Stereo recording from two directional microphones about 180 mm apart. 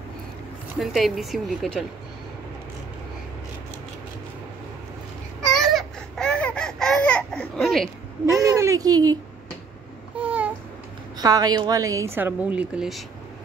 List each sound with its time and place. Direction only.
0.7 s a woman's voice: centre (ahead or behind)
5.4 s a sound: 5° left (ahead or behind)
8.3 s speech: 15° right (ahead or behind)
10.1 s babbling: 10° right (ahead or behind)
11.1 s a woman's voice: 20° right (ahead or behind); by 13.0 s 5° right (ahead or behind)